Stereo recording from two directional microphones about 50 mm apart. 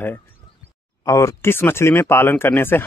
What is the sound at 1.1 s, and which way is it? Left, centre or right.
Speech, left.